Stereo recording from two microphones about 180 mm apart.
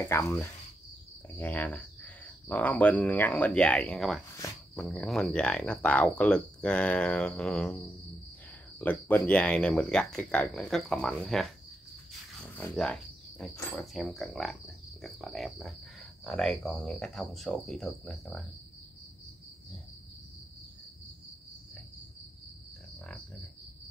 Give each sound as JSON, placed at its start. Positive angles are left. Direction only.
{"t": 0.0, "sound": "speech", "side_deg": 15}